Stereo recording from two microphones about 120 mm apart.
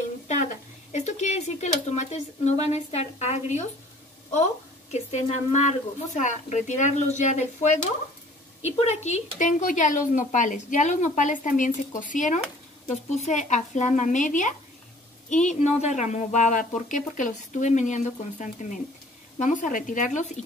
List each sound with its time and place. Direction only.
0.9 s speech: 75° left (ahead or behind)
5.1 s speech: 80° left
8.6 s speech: 70° left (ahead or behind); by 12.4 s 90° left
12.8 s speech: 70° left (ahead or behind); by 20.2 s 90° left